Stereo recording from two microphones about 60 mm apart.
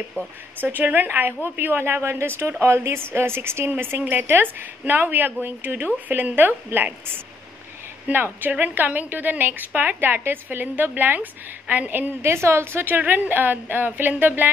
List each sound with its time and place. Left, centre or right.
0.6 s speech: right
12.2 s speech: right